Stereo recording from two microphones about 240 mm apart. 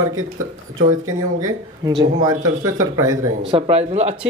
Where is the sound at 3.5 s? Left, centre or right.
Right.